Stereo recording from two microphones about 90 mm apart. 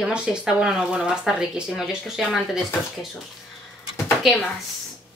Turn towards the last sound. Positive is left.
turn(degrees=0)  # may be behind; listen again after turning